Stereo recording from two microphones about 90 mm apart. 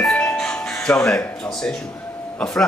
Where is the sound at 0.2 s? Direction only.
15° left (ahead or behind).